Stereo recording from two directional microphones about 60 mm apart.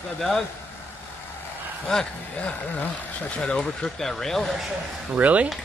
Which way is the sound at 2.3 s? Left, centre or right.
Left.